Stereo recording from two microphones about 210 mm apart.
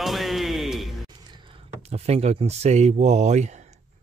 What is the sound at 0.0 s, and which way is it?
Music, centre (ahead or behind).